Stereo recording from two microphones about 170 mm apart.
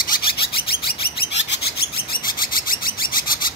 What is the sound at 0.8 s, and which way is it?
Bird, 90° left.